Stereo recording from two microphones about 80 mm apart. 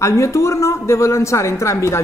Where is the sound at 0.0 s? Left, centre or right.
Left.